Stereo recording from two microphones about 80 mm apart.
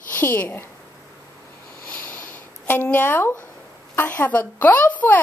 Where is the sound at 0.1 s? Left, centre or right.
Left.